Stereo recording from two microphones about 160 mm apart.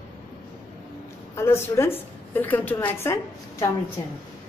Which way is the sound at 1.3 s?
15° left (ahead or behind).